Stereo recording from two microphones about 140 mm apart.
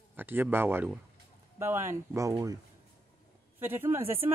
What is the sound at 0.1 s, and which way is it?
Speech, 15° right (ahead or behind).